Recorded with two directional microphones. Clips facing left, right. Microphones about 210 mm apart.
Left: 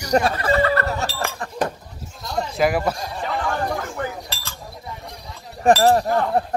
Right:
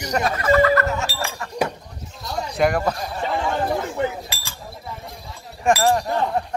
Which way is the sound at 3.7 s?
20° right (ahead or behind).